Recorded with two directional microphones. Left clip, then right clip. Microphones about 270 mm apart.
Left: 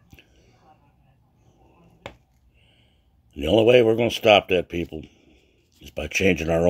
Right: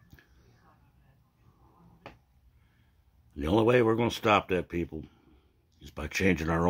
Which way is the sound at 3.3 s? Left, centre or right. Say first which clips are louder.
Left 8 dB; centre.